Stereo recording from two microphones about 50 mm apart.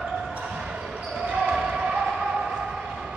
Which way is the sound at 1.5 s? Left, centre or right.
Centre.